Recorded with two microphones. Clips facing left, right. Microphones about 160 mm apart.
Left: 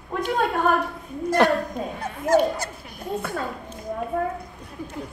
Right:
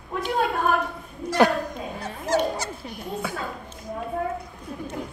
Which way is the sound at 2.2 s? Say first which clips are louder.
Left 4 dB; 50° left (ahead or behind).